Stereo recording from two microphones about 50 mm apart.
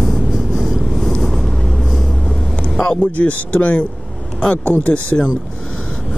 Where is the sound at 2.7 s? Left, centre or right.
Centre.